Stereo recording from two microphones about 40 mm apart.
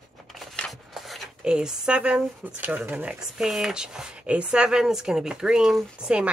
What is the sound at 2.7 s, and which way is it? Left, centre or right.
Speech, right.